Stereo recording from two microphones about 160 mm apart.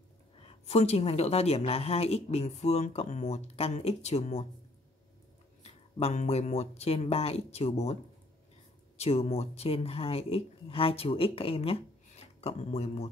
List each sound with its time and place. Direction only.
0.5 s speech: 40° left (ahead or behind)
5.6 s speech: 40° left (ahead or behind)